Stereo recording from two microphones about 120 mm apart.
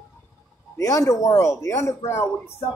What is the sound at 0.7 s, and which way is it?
Speech, 25° left (ahead or behind).